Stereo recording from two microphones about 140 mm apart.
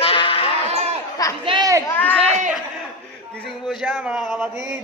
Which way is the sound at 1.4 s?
40° right (ahead or behind).